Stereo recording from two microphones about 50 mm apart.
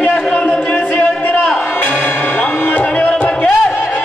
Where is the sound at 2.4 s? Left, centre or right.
Left.